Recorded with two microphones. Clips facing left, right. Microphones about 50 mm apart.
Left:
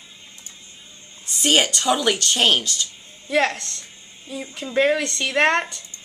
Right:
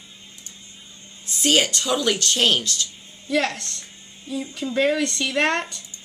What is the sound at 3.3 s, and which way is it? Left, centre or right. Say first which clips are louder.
Speech: left 2 dB; left.